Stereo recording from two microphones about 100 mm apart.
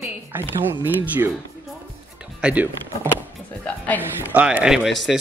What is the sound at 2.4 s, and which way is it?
A man's voice, 15° right (ahead or behind).